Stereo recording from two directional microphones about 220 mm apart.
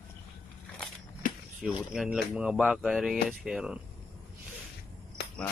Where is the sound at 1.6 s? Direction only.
5° right (ahead or behind).